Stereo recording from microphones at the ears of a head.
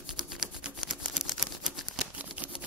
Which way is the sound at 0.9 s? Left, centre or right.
Centre.